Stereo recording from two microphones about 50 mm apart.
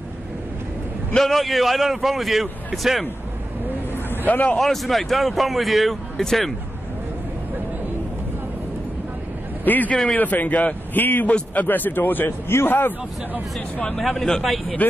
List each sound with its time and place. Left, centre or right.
1.1 s speech: centre
4.3 s speech: left
4.6 s speech: centre
9.7 s speech: left
13.9 s speech: centre
14.4 s speech: centre